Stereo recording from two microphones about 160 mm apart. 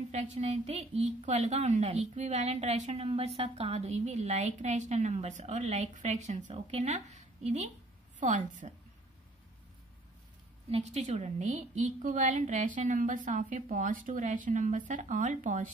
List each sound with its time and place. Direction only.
0.1 s a woman's voice: 45° right (ahead or behind)
10.7 s a woman's voice: 45° right (ahead or behind)